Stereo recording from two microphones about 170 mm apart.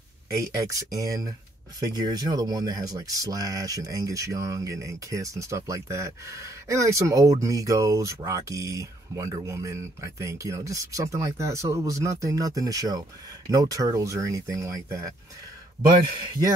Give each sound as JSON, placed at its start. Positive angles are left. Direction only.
{"t": 0.7, "sound": "speech", "side_deg": -20}